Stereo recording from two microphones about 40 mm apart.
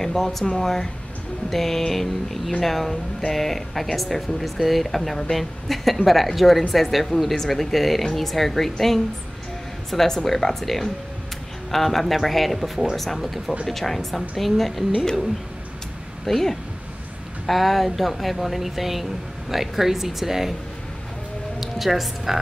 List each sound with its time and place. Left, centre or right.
0.0 s a sound: centre
3.3 s speech: centre
9.8 s a sound: centre
11.7 s speech: centre
16.3 s a woman's voice: centre
21.5 s a woman's voice: centre